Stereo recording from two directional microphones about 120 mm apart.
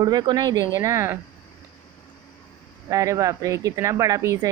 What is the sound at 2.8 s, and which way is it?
A woman's voice, 30° right (ahead or behind).